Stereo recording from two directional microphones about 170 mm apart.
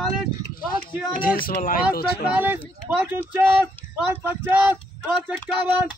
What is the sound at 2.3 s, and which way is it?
Speech, 10° right (ahead or behind).